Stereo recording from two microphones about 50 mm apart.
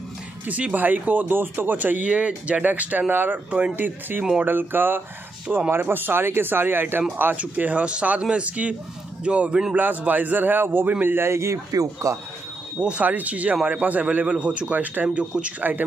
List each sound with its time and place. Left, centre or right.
0.5 s speech: right
3.4 s a man's voice: right
3.7 s speech: right
7.3 s a man's voice: right
9.8 s speech: right
11.2 s speech: right
12.7 s a man's voice: right
13.0 s speech: right
15.0 s a man's voice: right